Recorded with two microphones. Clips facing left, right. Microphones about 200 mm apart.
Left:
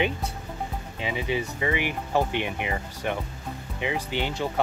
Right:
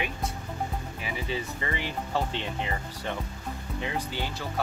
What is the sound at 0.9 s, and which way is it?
Speech, 20° left (ahead or behind).